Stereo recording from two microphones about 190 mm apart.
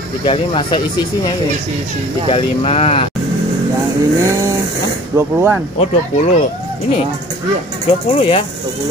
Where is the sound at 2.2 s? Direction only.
30° left (ahead or behind).